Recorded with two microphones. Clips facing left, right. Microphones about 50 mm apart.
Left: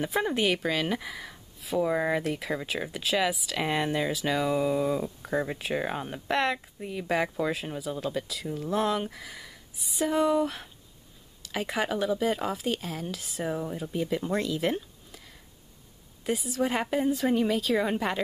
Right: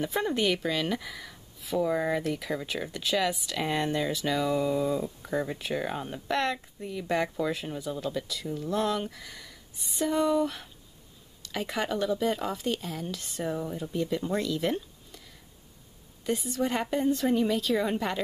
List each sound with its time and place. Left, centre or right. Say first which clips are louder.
0.1 s speech: left 2 dB; centre
14.6 s a sound: left 1 dB; centre
16.3 s speech: left 1 dB; centre